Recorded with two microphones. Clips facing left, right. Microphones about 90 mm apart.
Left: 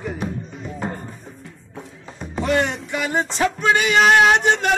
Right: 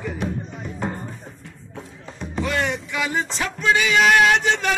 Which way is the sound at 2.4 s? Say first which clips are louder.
Left 4 dB; 25° left (ahead or behind).